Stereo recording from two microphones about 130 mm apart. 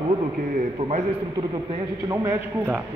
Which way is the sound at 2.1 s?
25° right (ahead or behind).